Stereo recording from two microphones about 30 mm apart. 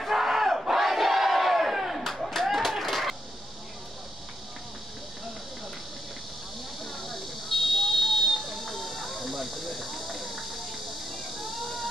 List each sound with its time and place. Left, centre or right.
0.1 s crowd: centre
0.7 s crowd: centre
2.0 s a sound: centre
2.8 s printer: centre
6.8 s buzzer: centre
11.3 s a sound: centre